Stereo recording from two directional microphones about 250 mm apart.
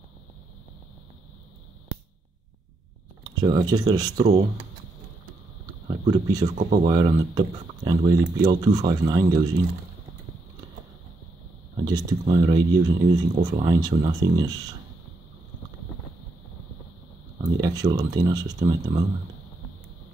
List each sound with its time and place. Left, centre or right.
3.3 s speech: centre
4.3 s speech: right
6.0 s speech: centre
11.7 s speech: centre
17.6 s speech: centre